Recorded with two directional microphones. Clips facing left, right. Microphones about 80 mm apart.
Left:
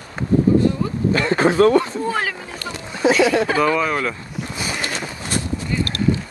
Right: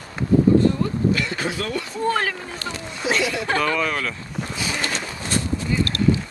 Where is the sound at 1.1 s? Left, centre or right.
Left.